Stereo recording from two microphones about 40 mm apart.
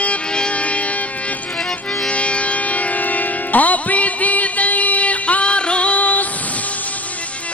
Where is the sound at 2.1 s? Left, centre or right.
Left.